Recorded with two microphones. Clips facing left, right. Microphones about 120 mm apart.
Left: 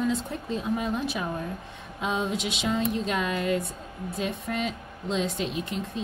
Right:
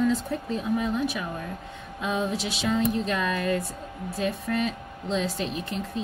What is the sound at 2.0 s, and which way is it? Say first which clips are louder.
Speech: right 1 dB; 20° left (ahead or behind).